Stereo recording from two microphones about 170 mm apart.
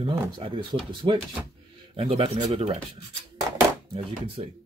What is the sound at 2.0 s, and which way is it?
Speech, 35° right (ahead or behind).